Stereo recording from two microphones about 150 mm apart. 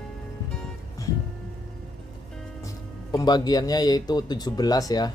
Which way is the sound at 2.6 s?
25° left (ahead or behind).